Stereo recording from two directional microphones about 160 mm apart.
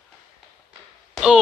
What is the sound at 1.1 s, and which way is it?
Basketball bounce, 5° right (ahead or behind).